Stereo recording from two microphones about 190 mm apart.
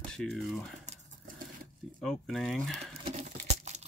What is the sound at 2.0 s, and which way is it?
Speech, centre (ahead or behind).